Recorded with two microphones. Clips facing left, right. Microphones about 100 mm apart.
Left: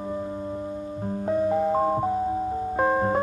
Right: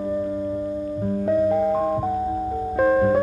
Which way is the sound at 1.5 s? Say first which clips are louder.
Right 2 dB; 25° left (ahead or behind).